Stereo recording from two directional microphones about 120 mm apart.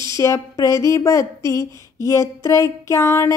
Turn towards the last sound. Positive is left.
turn(degrees=20)  # may be behind; listen again after turning